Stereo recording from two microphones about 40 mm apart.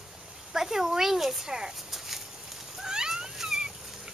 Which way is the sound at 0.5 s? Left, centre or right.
Centre.